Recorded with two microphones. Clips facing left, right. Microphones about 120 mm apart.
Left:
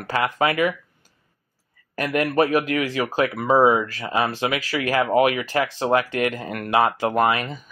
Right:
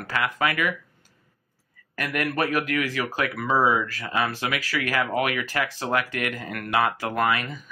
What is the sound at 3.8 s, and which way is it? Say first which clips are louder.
Speech: left 3 dB; 20° left (ahead or behind).